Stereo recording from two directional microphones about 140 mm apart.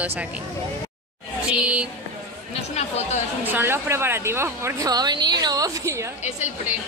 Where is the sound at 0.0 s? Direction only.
10° right (ahead or behind).